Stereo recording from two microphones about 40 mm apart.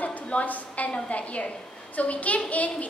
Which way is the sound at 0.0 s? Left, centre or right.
Left.